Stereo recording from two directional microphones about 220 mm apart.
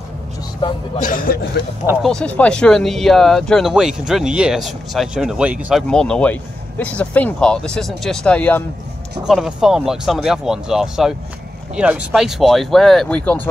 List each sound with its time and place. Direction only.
0.9 s a man's voice: 35° left (ahead or behind)
2.0 s speech: 5° left (ahead or behind)